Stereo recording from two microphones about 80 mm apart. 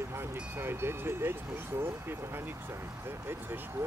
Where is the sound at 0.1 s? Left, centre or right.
Right.